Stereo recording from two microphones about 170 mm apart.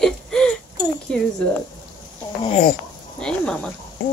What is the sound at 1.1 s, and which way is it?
Chink, 5° left (ahead or behind).